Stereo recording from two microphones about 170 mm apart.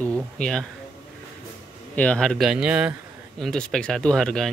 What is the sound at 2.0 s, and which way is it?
Speech, 5° left (ahead or behind).